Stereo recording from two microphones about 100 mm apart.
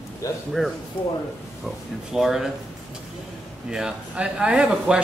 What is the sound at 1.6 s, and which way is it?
Speech, 5° right (ahead or behind).